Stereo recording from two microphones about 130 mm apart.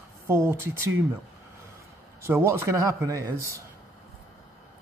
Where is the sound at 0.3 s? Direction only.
20° right (ahead or behind).